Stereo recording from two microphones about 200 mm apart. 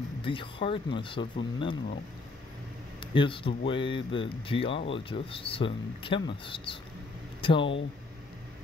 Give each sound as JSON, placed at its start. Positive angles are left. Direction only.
{"t": 0.2, "sound": "speech", "side_deg": 25}
{"t": 3.0, "sound": "speech", "side_deg": 25}